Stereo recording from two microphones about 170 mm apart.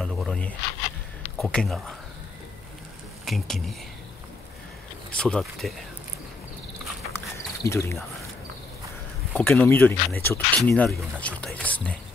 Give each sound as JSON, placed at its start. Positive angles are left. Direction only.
{"t": 0.0, "sound": "a sound", "side_deg": 5}
{"t": 1.4, "sound": "speech", "side_deg": 5}
{"t": 3.3, "sound": "speech", "side_deg": 0}
{"t": 5.1, "sound": "speech", "side_deg": 5}
{"t": 7.1, "sound": "a sound", "side_deg": 15}
{"t": 9.4, "sound": "speech", "side_deg": 10}